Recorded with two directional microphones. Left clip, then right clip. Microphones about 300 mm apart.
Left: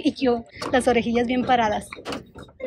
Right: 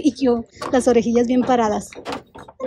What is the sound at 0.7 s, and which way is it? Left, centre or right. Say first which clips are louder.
A woman's voice: right 4 dB; centre.